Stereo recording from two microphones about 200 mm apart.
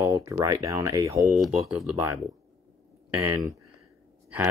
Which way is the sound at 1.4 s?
5° right (ahead or behind).